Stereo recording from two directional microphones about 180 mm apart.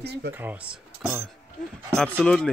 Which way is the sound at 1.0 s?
10° right (ahead or behind).